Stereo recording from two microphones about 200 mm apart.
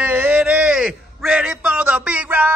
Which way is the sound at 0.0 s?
10° right (ahead or behind).